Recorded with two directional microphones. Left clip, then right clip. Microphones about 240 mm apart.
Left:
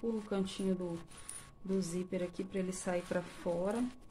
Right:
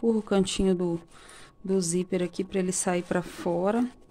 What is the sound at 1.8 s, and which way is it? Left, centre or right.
Speech, right.